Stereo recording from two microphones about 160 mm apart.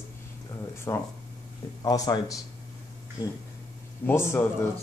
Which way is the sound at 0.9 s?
20° left (ahead or behind).